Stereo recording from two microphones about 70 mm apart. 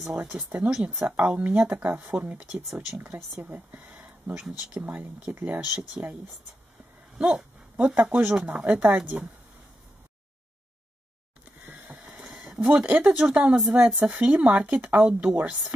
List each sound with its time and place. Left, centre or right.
0.0 s a woman's voice: centre
0.6 s speech: right; by 3.0 s centre
3.5 s a sound: centre
5.3 s speech: right
5.8 s speech: centre
7.2 s speech: centre
11.6 s a sound: right
12.1 s a sound: centre
12.7 s speech: centre
13.6 s a woman's voice: centre
14.0 s speech: centre